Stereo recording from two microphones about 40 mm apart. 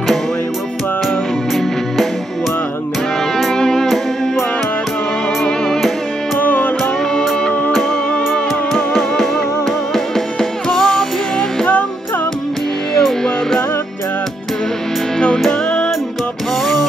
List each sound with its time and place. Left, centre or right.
3.5 s music: centre
3.8 s music: centre
6.4 s music: left
6.8 s music: centre
10.7 s music: centre
15.1 s music: centre